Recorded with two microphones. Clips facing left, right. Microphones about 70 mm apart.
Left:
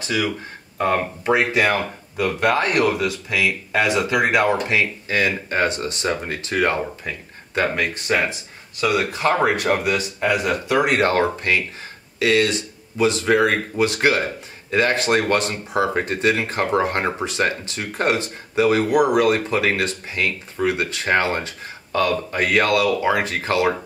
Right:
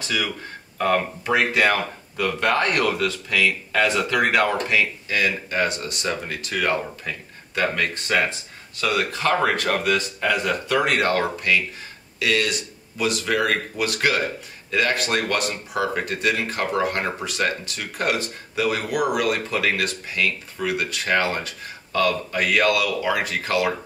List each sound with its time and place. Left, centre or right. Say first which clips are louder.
0.7 s speech: left 1 dB; left
4.6 s speech: left 1 dB; left